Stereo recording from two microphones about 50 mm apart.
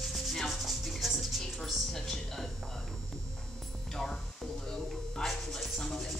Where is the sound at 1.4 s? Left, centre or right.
Centre.